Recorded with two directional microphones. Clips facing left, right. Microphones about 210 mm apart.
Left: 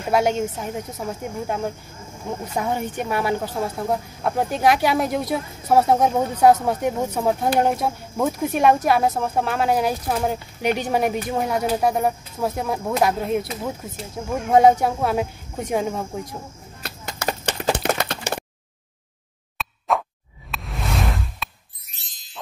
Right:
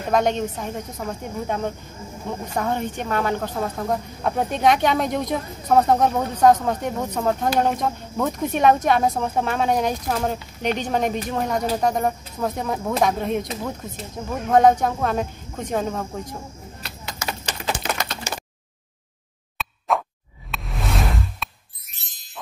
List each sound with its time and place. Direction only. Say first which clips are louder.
0.1 s speech: left 1 dB; 10° left (ahead or behind)
16.8 s a sound: left 5 dB; 45° left (ahead or behind)
19.6 s plop: even; centre (ahead or behind)
20.5 s music: even; centre (ahead or behind)